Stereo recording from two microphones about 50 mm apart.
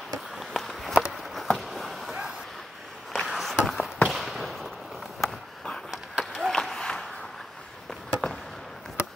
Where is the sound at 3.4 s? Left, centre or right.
Centre.